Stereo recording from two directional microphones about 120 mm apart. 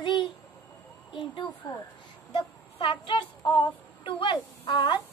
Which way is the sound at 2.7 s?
45° left (ahead or behind).